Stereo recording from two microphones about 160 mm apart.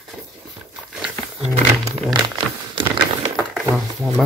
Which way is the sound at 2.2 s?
30° right (ahead or behind).